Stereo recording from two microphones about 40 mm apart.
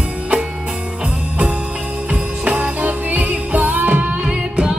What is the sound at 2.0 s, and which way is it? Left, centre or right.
Music, right.